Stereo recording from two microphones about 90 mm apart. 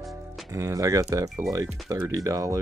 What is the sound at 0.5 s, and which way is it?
Speech, 35° right (ahead or behind).